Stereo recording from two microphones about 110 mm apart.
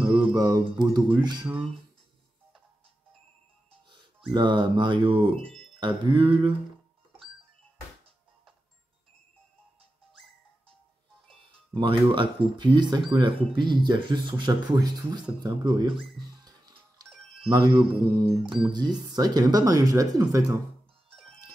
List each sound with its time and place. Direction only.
0.0 s mantra: 50° right (ahead or behind)
4.3 s speech: 45° right (ahead or behind)
11.2 s speech: 50° right (ahead or behind)
16.4 s music: 35° right (ahead or behind)
17.5 s speech: 40° right (ahead or behind)